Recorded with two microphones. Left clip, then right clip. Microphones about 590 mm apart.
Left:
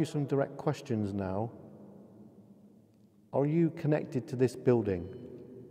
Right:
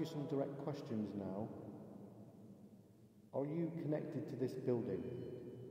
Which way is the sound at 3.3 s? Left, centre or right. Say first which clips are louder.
Left 12 dB; left.